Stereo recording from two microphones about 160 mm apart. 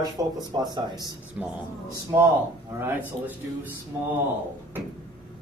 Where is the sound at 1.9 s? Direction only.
20° right (ahead or behind).